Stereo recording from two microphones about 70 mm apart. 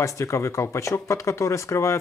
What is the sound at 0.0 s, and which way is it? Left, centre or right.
Speech, left.